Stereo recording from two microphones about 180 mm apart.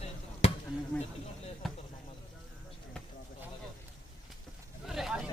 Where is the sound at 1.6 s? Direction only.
Centre (ahead or behind).